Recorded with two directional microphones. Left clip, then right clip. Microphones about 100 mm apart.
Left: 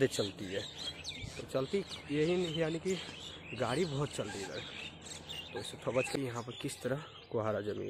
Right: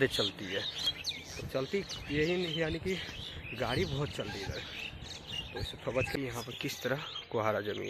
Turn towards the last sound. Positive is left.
turn(degrees=15)  # may be behind; listen again after turning